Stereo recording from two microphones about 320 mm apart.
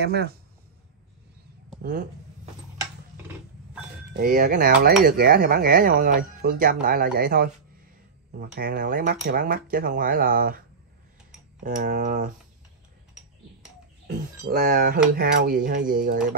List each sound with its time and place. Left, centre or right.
0.0 s speech: right
1.8 s speech: right
4.2 s speech: right
11.6 s speech: right
14.5 s speech: right